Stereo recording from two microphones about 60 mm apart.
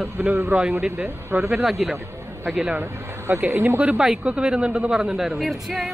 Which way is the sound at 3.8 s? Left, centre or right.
Right.